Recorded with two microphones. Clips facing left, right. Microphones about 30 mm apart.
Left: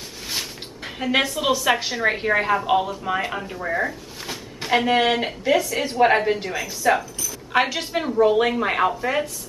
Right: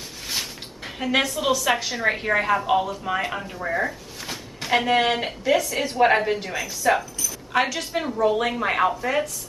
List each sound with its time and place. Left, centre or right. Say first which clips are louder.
0.3 s a woman's voice: even; centre